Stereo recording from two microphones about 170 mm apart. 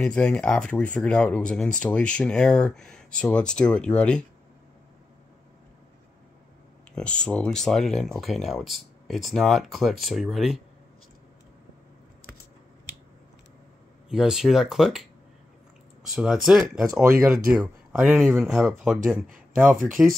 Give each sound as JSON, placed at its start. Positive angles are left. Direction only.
{"t": 0.0, "sound": "speech", "side_deg": 5}
{"t": 7.0, "sound": "speech", "side_deg": 5}
{"t": 14.0, "sound": "speech", "side_deg": -5}
{"t": 16.1, "sound": "speech", "side_deg": -5}